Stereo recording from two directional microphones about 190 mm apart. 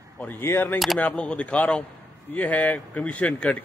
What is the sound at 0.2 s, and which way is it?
Speech, 10° left (ahead or behind).